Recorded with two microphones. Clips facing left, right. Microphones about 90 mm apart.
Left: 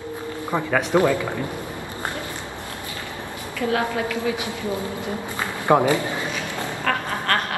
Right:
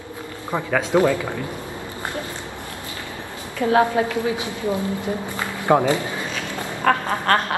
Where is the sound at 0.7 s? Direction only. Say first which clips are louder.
Right 1 dB; 20° left (ahead or behind).